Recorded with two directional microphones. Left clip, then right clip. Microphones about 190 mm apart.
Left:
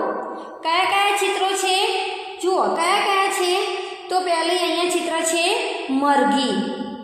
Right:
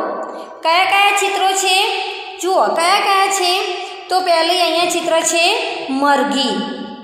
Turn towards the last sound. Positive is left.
turn(degrees=-15)  # may be behind; listen again after turning